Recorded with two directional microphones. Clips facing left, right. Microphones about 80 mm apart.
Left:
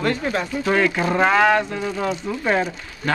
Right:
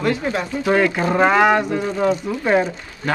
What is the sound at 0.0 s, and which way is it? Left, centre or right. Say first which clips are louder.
Speech: right 1 dB; centre.